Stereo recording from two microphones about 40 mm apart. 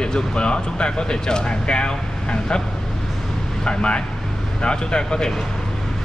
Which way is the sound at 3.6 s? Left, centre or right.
Left.